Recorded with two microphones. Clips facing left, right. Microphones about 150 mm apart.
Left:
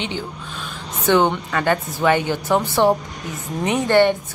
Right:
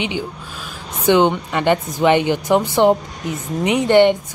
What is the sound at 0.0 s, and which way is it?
A woman's voice, 10° right (ahead or behind).